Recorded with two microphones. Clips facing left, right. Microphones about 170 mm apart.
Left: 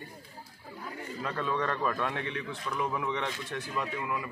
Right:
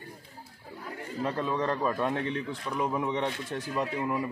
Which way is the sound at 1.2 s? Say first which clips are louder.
Right 3 dB; 30° right (ahead or behind).